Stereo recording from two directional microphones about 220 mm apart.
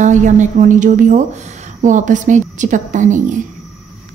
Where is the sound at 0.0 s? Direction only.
35° right (ahead or behind).